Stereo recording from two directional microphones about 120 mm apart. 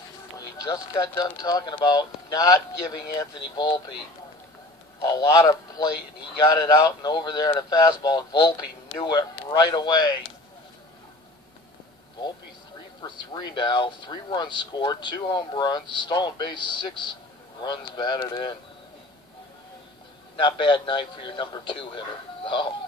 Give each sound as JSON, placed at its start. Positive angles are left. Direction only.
{"t": 0.4, "sound": "speech", "side_deg": 30}
{"t": 5.0, "sound": "speech", "side_deg": 35}
{"t": 13.0, "sound": "speech", "side_deg": 35}
{"t": 20.3, "sound": "a man's voice", "side_deg": 40}